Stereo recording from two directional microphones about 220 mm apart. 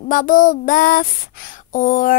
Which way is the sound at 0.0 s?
35° left (ahead or behind).